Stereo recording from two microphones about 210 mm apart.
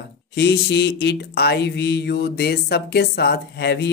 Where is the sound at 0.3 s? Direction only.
50° left (ahead or behind).